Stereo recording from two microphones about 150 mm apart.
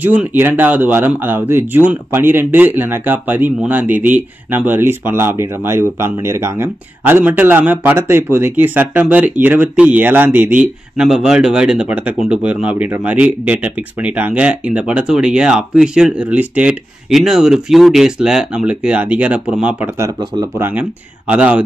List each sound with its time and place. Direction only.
0.0 s speech: 10° right (ahead or behind)
20.0 s speech: 25° right (ahead or behind)
21.3 s speech: 10° right (ahead or behind)